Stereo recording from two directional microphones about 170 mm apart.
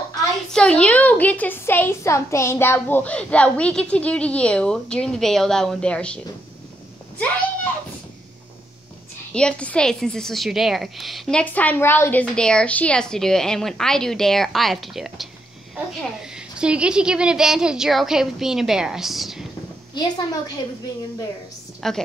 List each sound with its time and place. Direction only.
0.5 s a woman's voice: 5° left (ahead or behind)
9.3 s a woman's voice: 5° left (ahead or behind)
19.9 s a woman's voice: 25° left (ahead or behind)
21.8 s a woman's voice: centre (ahead or behind)